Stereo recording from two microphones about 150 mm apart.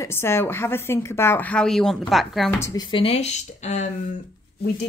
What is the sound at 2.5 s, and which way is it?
Speech, 20° left (ahead or behind).